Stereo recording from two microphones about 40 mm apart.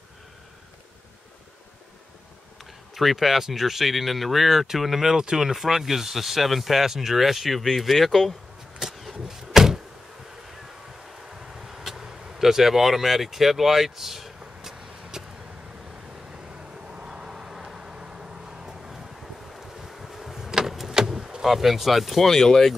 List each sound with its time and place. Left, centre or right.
2.9 s speech: centre
9.3 s door: centre
11.2 s vehicle: centre
16.4 s vehicle: right
19.5 s vehicle: centre
21.5 s speech: centre